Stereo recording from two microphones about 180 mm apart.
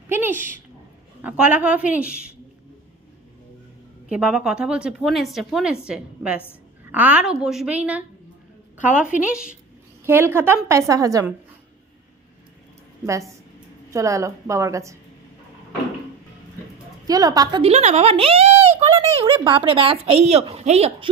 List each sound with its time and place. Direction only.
0.1 s a sound: 10° right (ahead or behind)
1.2 s a woman's voice: 5° right (ahead or behind)
4.1 s a woman's voice: 5° right (ahead or behind)
9.2 s a woman's voice: 5° right (ahead or behind)
13.0 s a woman's voice: 15° right (ahead or behind)
17.0 s speech: 20° right (ahead or behind); by 21.1 s 35° right (ahead or behind)